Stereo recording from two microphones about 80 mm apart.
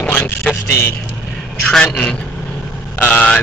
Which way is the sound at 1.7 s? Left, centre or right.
Centre.